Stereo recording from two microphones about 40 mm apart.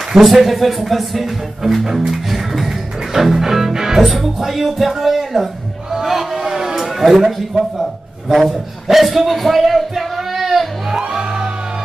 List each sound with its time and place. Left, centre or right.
0.1 s speech: centre
6.4 s a sound: centre
6.8 s a man's voice: centre
11.0 s music: centre